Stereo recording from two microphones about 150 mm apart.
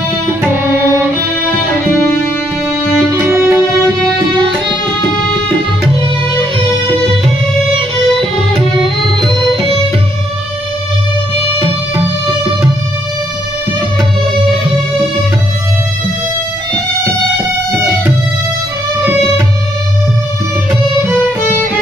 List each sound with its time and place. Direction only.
3.1 s music: 20° right (ahead or behind)